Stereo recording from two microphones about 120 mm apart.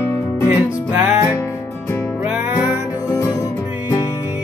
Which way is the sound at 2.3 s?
15° right (ahead or behind).